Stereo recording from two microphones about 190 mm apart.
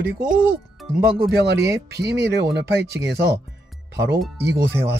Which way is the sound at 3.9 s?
15° right (ahead or behind).